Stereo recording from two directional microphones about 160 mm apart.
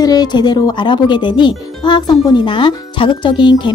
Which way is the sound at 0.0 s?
25° left (ahead or behind).